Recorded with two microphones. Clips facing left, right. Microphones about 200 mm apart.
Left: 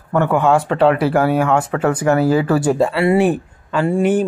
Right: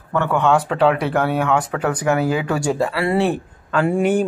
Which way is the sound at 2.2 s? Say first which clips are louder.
Left 5 dB; 40° left (ahead or behind).